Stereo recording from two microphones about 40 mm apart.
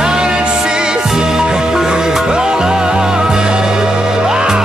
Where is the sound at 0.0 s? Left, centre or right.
Centre.